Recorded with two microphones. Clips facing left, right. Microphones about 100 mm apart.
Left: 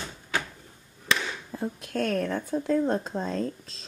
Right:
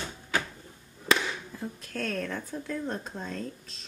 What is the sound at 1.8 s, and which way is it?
Speech, 20° left (ahead or behind).